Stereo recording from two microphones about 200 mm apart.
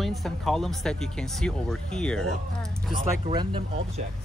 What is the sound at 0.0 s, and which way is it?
Speech, centre (ahead or behind).